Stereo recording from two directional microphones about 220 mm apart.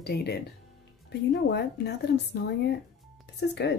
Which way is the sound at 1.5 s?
50° left (ahead or behind).